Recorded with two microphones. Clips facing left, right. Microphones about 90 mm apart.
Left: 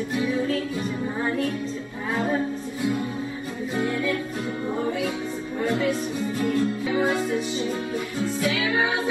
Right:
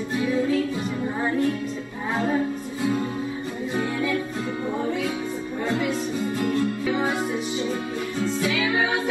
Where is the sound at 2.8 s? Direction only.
25° right (ahead or behind).